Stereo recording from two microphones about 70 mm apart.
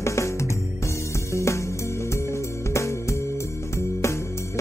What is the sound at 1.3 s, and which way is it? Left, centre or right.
Music, left.